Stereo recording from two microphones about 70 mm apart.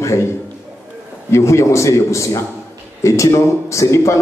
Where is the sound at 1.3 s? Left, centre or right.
Left.